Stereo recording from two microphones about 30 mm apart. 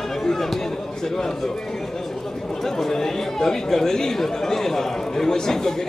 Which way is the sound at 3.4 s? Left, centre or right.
Centre.